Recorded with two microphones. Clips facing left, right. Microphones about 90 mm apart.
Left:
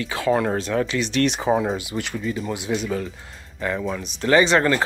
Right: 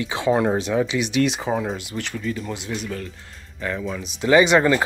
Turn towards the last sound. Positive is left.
turn(degrees=-10)  # may be behind; listen again after turning